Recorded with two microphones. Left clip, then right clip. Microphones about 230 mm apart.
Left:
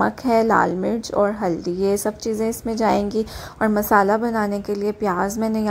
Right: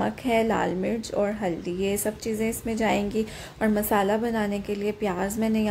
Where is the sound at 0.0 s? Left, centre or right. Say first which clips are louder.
Left 6 dB; centre.